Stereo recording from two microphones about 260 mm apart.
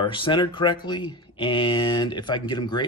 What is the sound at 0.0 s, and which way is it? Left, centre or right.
Speech, centre.